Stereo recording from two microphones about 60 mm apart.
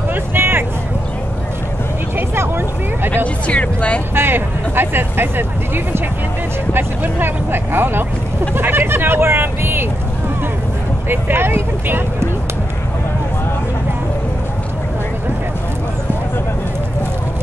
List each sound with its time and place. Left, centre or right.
0.1 s music: right
2.1 s vehicle: right
3.4 s speech: centre
4.1 s speech: right
6.7 s speech: right
11.1 s speech: right